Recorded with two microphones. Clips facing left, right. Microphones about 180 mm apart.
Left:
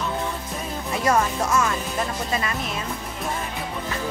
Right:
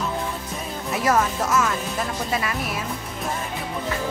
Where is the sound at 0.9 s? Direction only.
5° right (ahead or behind).